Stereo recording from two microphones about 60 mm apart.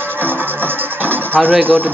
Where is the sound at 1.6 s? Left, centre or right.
Right.